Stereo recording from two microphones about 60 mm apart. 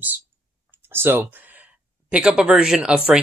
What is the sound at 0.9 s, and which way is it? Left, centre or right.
Speech, right.